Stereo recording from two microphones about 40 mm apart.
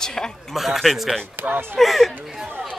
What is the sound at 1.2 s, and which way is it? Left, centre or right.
Speech, right.